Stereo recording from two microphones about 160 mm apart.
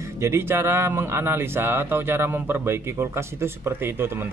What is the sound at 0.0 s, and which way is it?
Speech, 15° right (ahead or behind).